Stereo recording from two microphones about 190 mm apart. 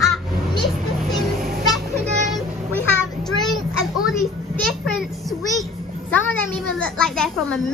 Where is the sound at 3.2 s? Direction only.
Centre (ahead or behind).